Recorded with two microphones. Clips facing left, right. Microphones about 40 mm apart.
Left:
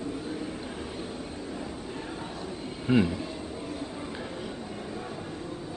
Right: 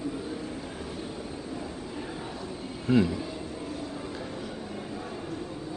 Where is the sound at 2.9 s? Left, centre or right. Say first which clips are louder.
Even; centre.